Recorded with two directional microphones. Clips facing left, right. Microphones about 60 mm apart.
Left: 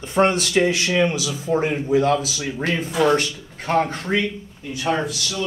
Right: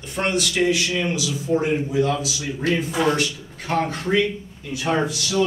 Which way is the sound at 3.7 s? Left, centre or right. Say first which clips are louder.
Left 3 dB; left.